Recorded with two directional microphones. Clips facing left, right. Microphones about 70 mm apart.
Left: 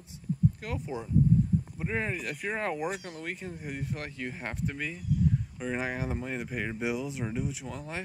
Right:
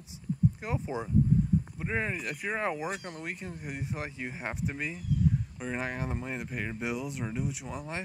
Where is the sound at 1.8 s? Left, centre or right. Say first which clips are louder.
Even; centre.